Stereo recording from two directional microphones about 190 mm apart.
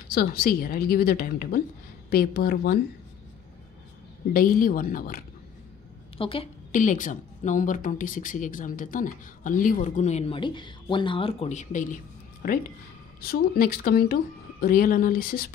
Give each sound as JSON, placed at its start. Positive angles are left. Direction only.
{"t": 0.1, "sound": "a woman's voice", "side_deg": 55}
{"t": 4.3, "sound": "a woman's voice", "side_deg": 50}
{"t": 6.1, "sound": "a woman's voice", "side_deg": 30}
{"t": 6.7, "sound": "a woman's voice", "side_deg": 45}